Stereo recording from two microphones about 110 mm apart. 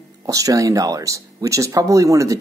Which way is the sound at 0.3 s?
30° right (ahead or behind).